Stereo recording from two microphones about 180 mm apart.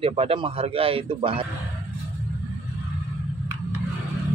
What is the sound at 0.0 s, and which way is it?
A man's voice, 30° right (ahead or behind).